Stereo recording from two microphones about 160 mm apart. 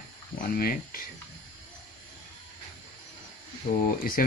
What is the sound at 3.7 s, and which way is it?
Speech, 70° left (ahead or behind).